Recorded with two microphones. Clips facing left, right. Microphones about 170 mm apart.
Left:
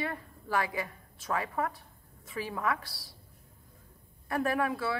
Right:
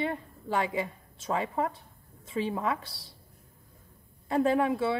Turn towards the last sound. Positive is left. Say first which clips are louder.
# right 5 dB
turn(degrees=-25)  # may be behind; listen again after turning